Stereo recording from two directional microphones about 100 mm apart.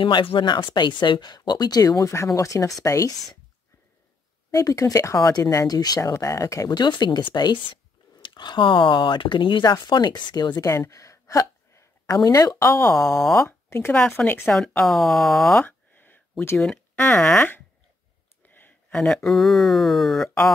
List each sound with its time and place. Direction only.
0.0 s speech: 60° left (ahead or behind); by 3.3 s 35° left (ahead or behind)
4.5 s speech: 35° left (ahead or behind)
6.7 s speech: 45° left (ahead or behind); by 14.4 s 20° left (ahead or behind)
14.4 s speech: centre (ahead or behind)
15.6 s a sound: 20° left (ahead or behind)
16.6 s speech: 15° left (ahead or behind)
18.4 s a sound: 20° left (ahead or behind)
18.9 s speech: 5° left (ahead or behind)